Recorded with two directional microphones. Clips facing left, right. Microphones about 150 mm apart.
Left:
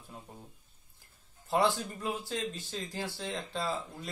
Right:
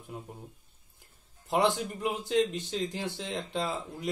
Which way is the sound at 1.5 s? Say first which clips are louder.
Right 2 dB; 20° right (ahead or behind).